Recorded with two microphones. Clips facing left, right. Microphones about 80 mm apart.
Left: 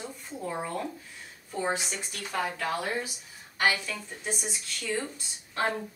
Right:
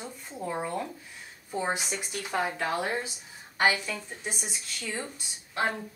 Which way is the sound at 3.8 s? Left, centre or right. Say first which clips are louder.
Right 2 dB; centre.